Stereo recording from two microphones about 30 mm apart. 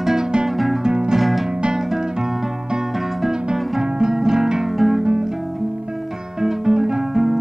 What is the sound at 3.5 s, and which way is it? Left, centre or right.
Music, right.